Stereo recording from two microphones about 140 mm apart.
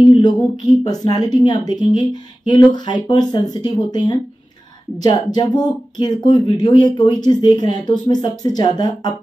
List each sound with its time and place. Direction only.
0.0 s a woman's voice: 35° left (ahead or behind)